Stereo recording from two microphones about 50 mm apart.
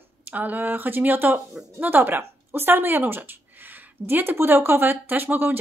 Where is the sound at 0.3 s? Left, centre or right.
Right.